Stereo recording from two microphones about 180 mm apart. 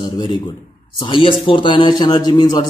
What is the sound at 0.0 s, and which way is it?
A man's voice, 25° left (ahead or behind).